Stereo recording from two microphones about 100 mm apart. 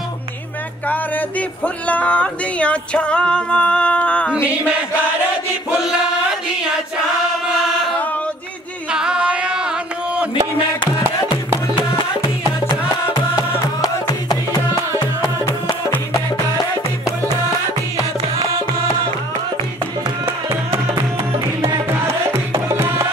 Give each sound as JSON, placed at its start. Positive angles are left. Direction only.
{"t": 0.8, "sound": "speech", "side_deg": 15}
{"t": 5.7, "sound": "chant", "side_deg": -5}
{"t": 7.5, "sound": "chant", "side_deg": 5}
{"t": 8.9, "sound": "music", "side_deg": -5}
{"t": 20.2, "sound": "music", "side_deg": -25}
{"t": 22.0, "sound": "music", "side_deg": -25}